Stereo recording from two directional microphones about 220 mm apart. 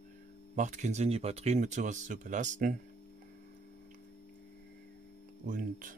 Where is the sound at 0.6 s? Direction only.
35° right (ahead or behind).